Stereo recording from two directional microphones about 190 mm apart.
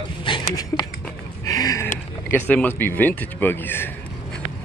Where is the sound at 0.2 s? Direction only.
20° left (ahead or behind).